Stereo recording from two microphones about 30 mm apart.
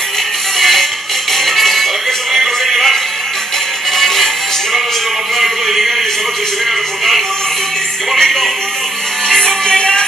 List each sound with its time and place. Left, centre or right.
0.6 s music: centre
2.3 s music: centre
3.9 s music: centre
5.4 s music: centre
8.2 s music: centre
9.7 s music: left